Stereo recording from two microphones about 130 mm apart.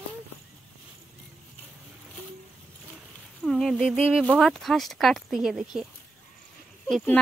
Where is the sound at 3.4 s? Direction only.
Centre (ahead or behind).